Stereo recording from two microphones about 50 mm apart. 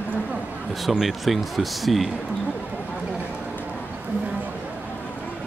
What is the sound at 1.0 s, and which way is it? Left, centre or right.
Speech, centre.